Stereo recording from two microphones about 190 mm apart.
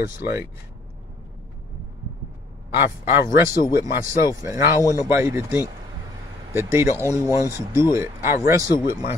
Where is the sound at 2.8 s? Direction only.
15° right (ahead or behind).